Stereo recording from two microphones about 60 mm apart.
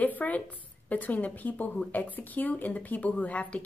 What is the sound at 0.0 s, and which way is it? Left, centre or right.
A woman's voice, left.